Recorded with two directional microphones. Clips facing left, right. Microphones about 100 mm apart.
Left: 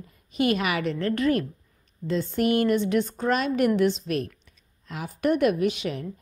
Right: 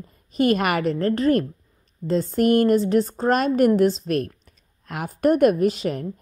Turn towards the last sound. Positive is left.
turn(degrees=-40)  # may be behind; listen again after turning